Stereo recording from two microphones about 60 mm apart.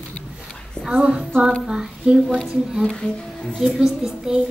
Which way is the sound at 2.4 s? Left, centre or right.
Centre.